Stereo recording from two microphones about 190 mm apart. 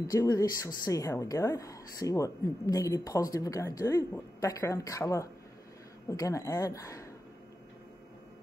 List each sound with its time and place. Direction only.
0.0 s a woman's voice: 20° left (ahead or behind)